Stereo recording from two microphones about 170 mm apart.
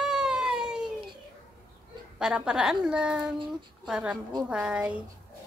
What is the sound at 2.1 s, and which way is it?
A woman's voice, 5° right (ahead or behind).